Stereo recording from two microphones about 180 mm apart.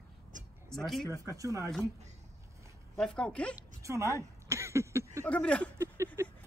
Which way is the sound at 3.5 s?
15° right (ahead or behind).